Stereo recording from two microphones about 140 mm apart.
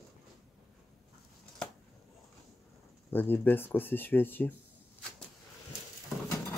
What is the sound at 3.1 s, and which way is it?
Speech, 15° left (ahead or behind).